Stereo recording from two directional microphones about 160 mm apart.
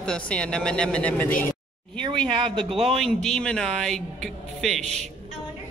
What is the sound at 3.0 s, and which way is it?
Speech, 5° left (ahead or behind).